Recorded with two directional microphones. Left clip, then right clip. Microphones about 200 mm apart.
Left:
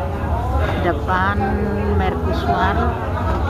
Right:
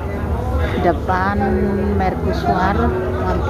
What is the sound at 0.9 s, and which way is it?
Speech, 30° right (ahead or behind).